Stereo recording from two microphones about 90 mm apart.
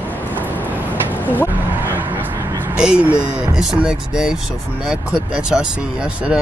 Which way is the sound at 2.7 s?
10° right (ahead or behind).